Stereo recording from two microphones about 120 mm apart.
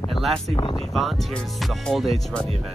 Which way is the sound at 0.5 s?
40° left (ahead or behind).